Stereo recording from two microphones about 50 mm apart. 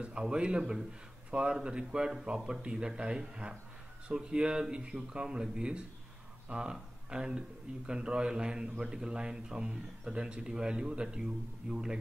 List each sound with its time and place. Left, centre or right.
0.0 s speech: centre